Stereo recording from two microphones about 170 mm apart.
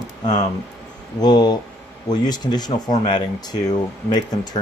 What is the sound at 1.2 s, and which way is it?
Speech, 25° left (ahead or behind).